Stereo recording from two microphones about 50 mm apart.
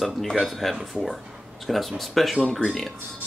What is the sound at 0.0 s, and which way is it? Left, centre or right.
Speech, centre.